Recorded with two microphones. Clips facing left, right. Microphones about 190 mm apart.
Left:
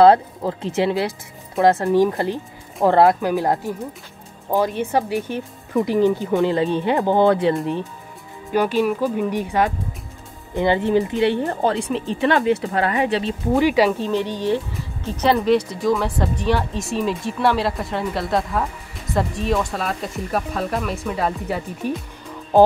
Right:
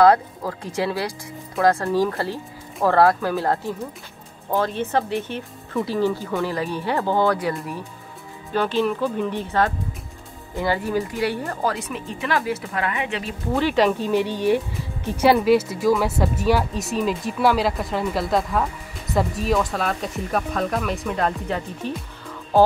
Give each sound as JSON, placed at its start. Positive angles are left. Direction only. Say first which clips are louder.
{"t": 0.0, "sound": "speech", "louder": "left 3 dB", "side_deg": 25}
{"t": 8.5, "sound": "speech", "louder": "left 3 dB", "side_deg": 15}
{"t": 13.6, "sound": "speech", "louder": "left 2 dB", "side_deg": 10}
{"t": 15.0, "sound": "speech", "louder": "right 1 dB", "side_deg": -10}